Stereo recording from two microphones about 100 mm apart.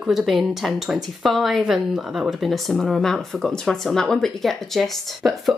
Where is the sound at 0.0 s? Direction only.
5° right (ahead or behind).